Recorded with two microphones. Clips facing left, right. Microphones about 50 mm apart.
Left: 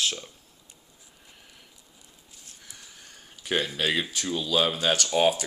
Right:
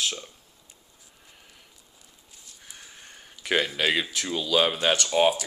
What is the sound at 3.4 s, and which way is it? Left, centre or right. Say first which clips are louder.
Speech: right 2 dB; right.